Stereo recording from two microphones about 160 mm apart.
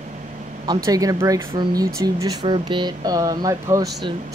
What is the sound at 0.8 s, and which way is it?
Speech, 20° right (ahead or behind).